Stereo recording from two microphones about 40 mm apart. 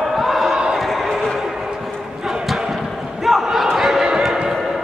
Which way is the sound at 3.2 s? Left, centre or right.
Centre.